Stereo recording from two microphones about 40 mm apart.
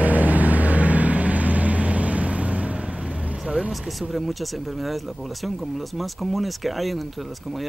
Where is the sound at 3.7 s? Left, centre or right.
Centre.